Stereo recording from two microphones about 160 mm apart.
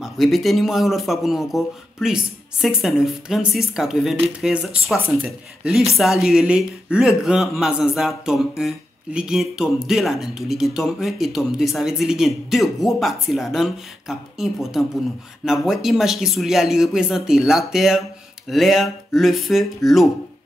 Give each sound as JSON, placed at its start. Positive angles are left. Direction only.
{"t": 0.0, "sound": "speech", "side_deg": 0}